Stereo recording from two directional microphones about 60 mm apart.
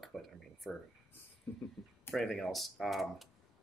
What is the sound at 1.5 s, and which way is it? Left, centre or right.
Speech, left.